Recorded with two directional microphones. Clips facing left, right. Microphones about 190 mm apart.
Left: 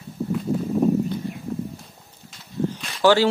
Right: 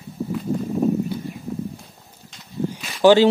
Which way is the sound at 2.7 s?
5° right (ahead or behind).